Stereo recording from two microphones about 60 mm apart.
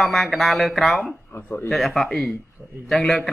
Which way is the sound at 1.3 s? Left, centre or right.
Left.